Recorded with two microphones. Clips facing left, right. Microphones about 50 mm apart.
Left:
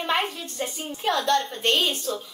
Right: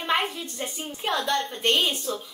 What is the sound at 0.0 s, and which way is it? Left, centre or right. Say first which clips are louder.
A woman's voice: even; centre.